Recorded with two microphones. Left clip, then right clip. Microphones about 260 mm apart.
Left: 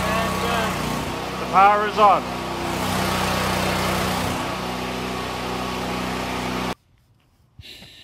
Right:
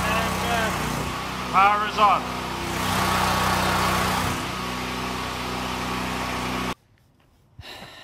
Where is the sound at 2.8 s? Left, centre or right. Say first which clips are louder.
Right 2 dB; centre.